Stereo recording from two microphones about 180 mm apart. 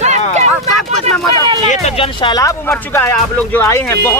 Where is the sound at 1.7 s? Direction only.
30° left (ahead or behind).